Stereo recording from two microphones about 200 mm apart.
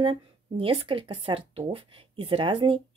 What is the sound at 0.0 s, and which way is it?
Speech, 25° right (ahead or behind).